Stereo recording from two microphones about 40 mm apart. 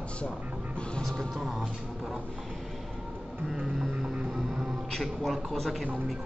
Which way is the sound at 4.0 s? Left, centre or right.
Right.